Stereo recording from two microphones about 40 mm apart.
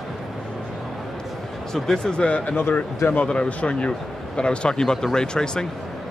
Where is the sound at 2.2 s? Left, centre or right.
Left.